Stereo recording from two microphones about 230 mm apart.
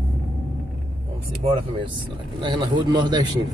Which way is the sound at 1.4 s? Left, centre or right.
Right.